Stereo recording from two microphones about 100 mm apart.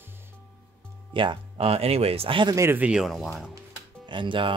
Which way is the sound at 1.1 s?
55° right (ahead or behind).